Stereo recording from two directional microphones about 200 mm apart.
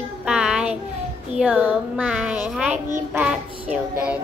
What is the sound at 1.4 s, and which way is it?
Speech, 5° right (ahead or behind).